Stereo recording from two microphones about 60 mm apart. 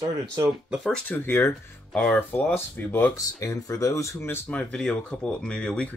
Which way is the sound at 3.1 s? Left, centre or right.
Left.